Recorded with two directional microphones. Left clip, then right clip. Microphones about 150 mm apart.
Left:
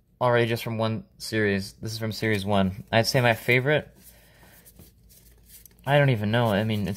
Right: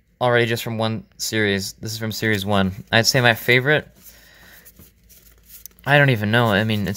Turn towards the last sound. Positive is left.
turn(degrees=-25)  # may be behind; listen again after turning